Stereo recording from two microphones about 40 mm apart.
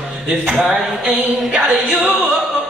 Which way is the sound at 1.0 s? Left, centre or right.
Right.